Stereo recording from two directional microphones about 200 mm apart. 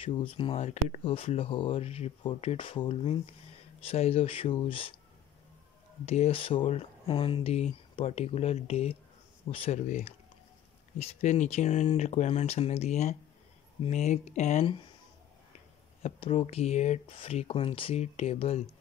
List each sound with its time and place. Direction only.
0.0 s speech: 25° left (ahead or behind)
6.0 s speech: 30° left (ahead or behind)
16.0 s speech: 25° left (ahead or behind)